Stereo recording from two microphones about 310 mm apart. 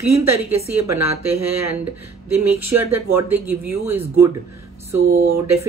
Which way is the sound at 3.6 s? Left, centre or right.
Centre.